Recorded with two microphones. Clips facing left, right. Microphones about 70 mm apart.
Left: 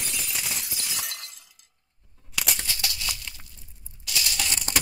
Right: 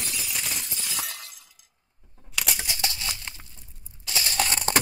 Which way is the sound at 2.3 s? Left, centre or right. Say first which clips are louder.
Even; centre.